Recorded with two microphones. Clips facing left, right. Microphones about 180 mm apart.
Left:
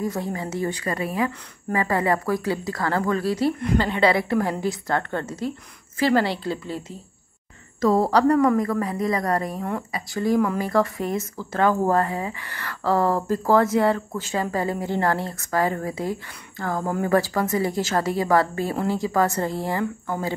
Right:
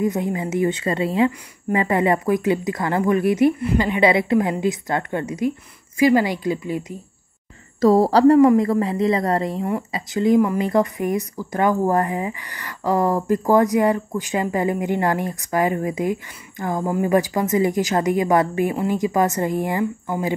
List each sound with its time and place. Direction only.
0.0 s a woman's voice: 20° right (ahead or behind)
3.5 s a woman's voice: 10° right (ahead or behind)
7.8 s a woman's voice: 35° right (ahead or behind); by 20.3 s 15° right (ahead or behind)